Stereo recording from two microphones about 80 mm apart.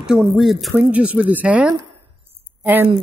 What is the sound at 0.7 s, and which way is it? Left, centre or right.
Speech, right.